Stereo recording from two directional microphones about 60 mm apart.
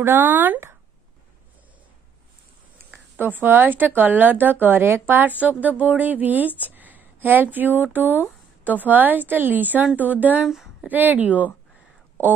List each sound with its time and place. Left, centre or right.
0.0 s a woman's voice: right
3.2 s a woman's voice: right
10.4 s a sound: centre
10.9 s speech: right